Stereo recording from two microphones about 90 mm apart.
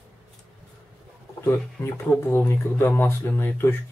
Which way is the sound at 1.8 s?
35° left (ahead or behind).